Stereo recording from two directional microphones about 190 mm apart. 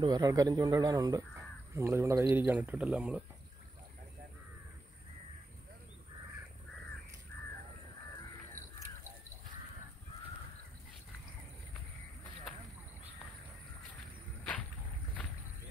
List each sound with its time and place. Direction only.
0.0 s speech: 20° right (ahead or behind)